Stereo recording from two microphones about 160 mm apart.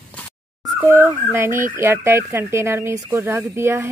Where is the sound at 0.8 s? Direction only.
15° right (ahead or behind).